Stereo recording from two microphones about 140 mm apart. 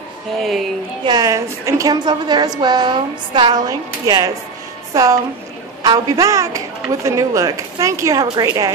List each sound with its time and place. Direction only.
0.4 s speech: centre (ahead or behind)
1.0 s a woman's voice: 25° right (ahead or behind)